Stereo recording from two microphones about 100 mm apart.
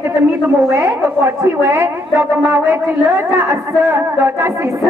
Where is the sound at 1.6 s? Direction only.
25° right (ahead or behind).